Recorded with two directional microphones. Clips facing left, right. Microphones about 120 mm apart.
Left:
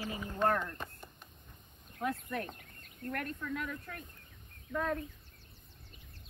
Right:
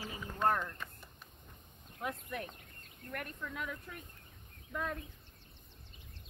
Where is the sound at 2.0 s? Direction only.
15° right (ahead or behind).